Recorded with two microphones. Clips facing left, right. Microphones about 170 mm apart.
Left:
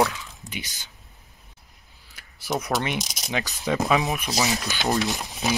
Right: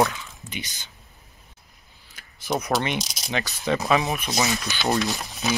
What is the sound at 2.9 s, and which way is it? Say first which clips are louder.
Speech: even; 20° left (ahead or behind).